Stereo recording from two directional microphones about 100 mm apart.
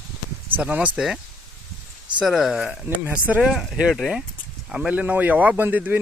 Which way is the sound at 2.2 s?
5° right (ahead or behind).